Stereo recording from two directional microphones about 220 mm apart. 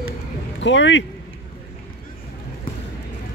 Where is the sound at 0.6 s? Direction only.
55° left (ahead or behind).